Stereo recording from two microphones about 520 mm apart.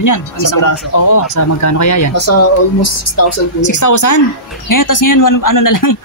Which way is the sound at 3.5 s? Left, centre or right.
Left.